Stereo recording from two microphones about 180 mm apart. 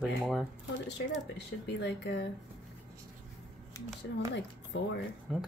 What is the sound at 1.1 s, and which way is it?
Speech, 70° left (ahead or behind).